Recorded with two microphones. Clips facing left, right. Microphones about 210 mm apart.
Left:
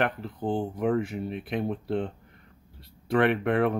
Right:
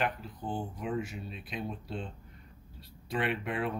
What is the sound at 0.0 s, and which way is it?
Speech, 60° left (ahead or behind).